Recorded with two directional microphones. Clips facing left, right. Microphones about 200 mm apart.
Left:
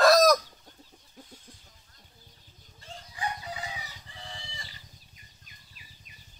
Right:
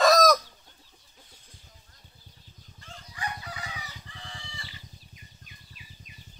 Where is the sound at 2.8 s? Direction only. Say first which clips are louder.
Left 2 dB; 25° left (ahead or behind).